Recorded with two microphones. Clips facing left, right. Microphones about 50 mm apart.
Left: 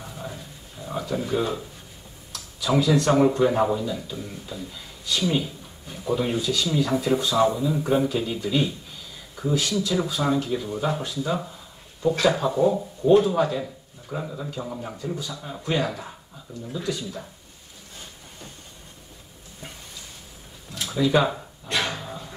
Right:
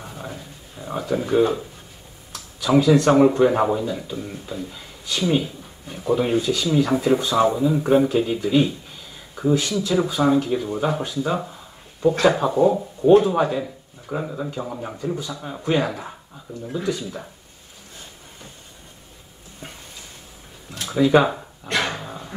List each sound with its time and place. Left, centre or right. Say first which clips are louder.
0.0 s a sound: right 2 dB; centre
2.6 s speech: right 5 dB; right
7.5 s a man's voice: right 5 dB; centre
20.8 s speech: right 5 dB; right
21.6 s speech: right 3 dB; right
21.9 s a sound: right 2 dB; centre